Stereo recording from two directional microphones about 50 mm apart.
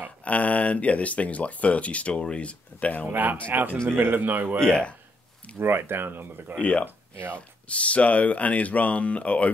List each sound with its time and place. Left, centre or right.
0.2 s speech: left
3.1 s a man's voice: right
4.6 s speech: centre
5.6 s speech: right
6.6 s speech: left